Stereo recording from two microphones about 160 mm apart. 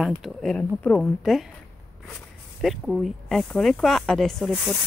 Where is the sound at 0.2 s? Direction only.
Centre (ahead or behind).